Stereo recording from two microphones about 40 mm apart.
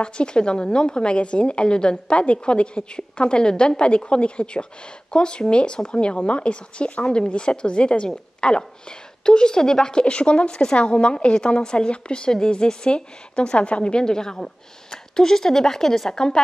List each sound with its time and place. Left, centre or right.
0.0 s a woman's voice: left